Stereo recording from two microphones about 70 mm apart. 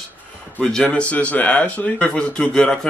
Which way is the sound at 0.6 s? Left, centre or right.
Centre.